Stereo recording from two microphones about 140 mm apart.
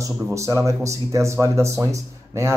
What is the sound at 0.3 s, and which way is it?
Speech, 20° right (ahead or behind).